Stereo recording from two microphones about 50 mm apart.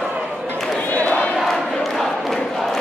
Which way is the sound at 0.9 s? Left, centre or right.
Left.